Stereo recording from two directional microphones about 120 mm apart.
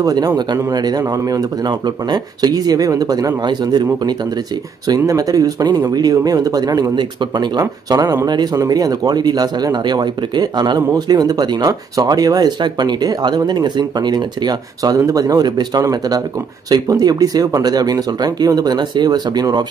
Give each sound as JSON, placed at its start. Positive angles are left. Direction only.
{"t": 0.0, "sound": "speech", "side_deg": -35}